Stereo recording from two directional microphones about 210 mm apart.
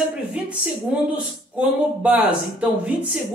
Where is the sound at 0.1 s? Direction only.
5° right (ahead or behind).